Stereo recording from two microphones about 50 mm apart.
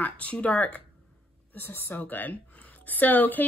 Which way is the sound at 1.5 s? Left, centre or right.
Left.